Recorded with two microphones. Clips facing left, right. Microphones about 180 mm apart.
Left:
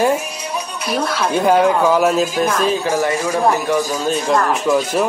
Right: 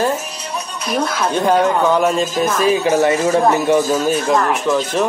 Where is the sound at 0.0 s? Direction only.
10° left (ahead or behind).